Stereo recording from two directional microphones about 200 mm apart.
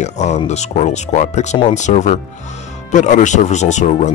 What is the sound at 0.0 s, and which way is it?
Speech, 35° left (ahead or behind).